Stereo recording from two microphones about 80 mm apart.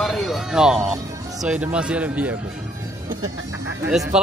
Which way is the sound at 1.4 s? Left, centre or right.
Centre.